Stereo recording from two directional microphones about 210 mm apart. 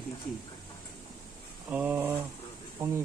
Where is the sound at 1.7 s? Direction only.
10° right (ahead or behind).